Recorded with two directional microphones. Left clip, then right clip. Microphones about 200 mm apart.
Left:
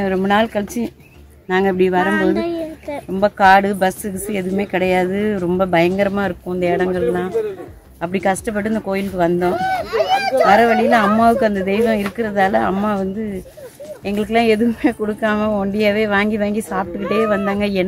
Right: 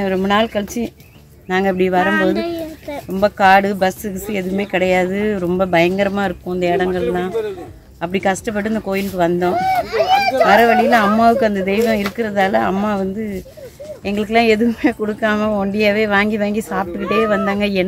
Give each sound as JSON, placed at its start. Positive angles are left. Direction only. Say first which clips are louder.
{"t": 0.0, "sound": "speech", "louder": "even", "side_deg": 0}
{"t": 2.0, "sound": "speech", "louder": "right 1 dB", "side_deg": 10}
{"t": 9.8, "sound": "a sound", "louder": "right 3 dB", "side_deg": 55}
{"t": 10.4, "sound": "speech", "louder": "even", "side_deg": 0}